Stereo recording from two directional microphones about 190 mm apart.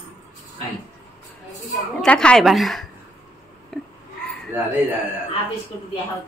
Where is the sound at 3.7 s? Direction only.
Centre (ahead or behind).